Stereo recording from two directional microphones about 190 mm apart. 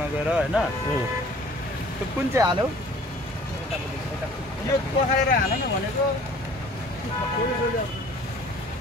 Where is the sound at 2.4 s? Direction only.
15° right (ahead or behind).